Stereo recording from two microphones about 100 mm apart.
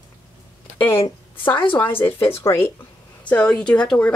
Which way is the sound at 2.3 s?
25° left (ahead or behind).